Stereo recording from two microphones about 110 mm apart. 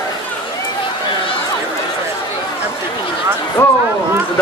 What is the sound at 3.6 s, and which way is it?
Speech, 25° left (ahead or behind).